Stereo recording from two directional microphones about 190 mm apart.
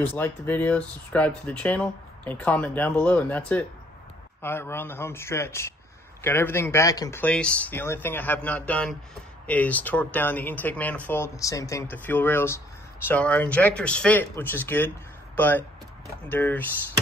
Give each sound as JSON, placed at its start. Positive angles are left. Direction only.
{"t": 0.0, "sound": "speech", "side_deg": 10}